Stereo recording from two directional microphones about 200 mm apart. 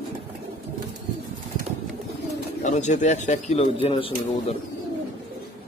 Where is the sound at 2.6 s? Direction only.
35° left (ahead or behind).